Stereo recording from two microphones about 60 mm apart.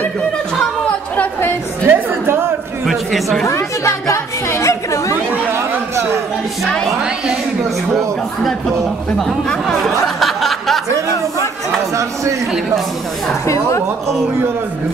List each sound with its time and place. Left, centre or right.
1.9 s chatter: right
2.9 s speech: centre
3.4 s chatter: left
5.5 s chatter: right
9.5 s a sound: centre
13.5 s a woman's voice: left